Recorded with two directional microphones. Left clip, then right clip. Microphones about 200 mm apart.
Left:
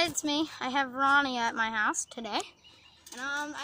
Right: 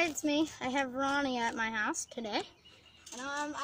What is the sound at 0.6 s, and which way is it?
A woman's voice, centre (ahead or behind).